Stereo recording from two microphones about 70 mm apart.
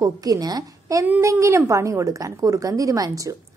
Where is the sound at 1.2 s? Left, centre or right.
Right.